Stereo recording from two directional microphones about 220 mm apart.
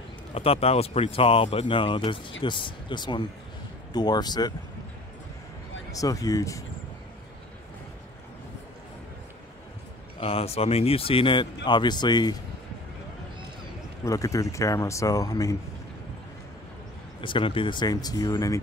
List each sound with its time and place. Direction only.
0.3 s speech: 25° left (ahead or behind)
5.9 s speech: 15° left (ahead or behind)
10.2 s speech: 25° left (ahead or behind)
14.0 s speech: 15° left (ahead or behind)
17.2 s speech: 25° left (ahead or behind)